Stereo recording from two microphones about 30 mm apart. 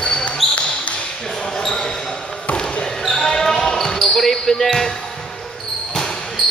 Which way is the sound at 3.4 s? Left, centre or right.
Centre.